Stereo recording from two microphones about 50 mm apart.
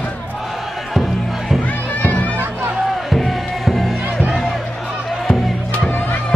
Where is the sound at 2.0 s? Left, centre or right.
Left.